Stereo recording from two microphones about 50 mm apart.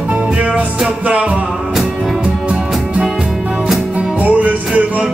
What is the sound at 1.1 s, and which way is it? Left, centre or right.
Music, right.